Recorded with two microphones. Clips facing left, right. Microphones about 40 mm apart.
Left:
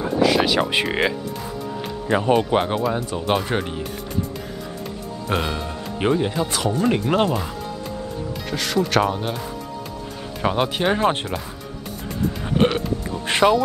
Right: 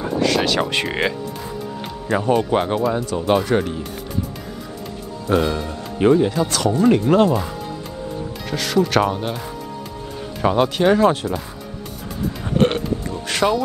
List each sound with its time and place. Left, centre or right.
0.0 s a sound: centre
0.7 s speech: centre
2.0 s speech: left
2.3 s speech: centre
5.4 s speech: centre
8.5 s speech: centre
10.4 s speech: centre
11.0 s speech: left
13.3 s speech: left